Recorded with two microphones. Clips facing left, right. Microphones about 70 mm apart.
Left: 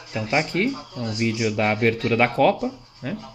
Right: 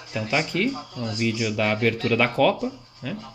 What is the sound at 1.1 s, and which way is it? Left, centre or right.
Speech, left.